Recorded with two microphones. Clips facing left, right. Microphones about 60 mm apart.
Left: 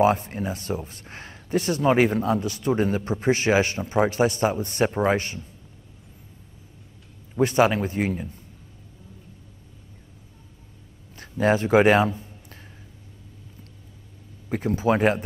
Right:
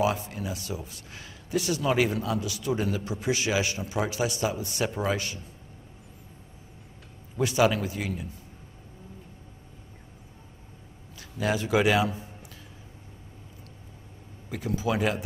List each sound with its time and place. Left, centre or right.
0.0 s speech: left
7.3 s speech: left
11.1 s a man's voice: left
14.5 s speech: left